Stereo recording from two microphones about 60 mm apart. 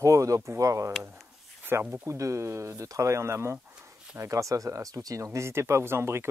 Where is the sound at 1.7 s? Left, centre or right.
Right.